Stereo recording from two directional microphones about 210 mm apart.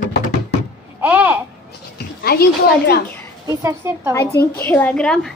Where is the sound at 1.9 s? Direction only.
50° left (ahead or behind).